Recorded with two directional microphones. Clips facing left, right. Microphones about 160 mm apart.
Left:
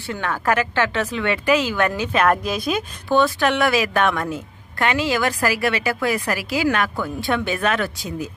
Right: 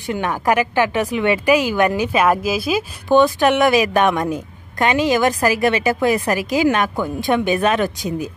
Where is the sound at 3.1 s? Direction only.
20° right (ahead or behind).